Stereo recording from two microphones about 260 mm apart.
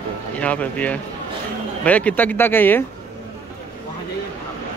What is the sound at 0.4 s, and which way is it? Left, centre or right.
Speech, centre.